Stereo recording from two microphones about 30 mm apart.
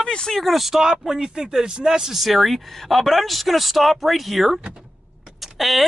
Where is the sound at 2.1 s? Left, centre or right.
Centre.